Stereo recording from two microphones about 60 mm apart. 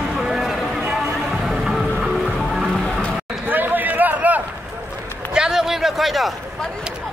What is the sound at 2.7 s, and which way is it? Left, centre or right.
Music, centre.